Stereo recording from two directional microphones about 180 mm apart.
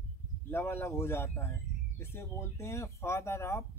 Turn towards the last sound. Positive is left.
turn(degrees=15)  # may be behind; listen again after turning